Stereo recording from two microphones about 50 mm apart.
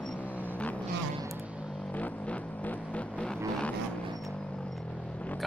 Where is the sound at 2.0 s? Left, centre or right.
Left.